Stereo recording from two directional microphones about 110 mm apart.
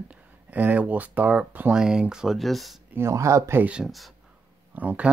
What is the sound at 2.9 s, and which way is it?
Speech, 25° right (ahead or behind).